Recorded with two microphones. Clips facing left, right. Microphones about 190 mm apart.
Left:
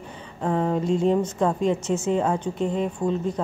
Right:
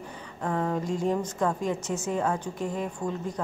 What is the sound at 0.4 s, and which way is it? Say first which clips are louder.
A woman's voice: left 5 dB; 25° left (ahead or behind).